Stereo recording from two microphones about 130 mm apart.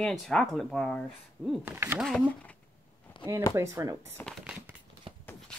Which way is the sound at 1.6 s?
20° right (ahead or behind).